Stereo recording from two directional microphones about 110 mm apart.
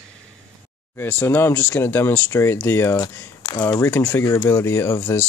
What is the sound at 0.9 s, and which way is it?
Speech, 20° left (ahead or behind).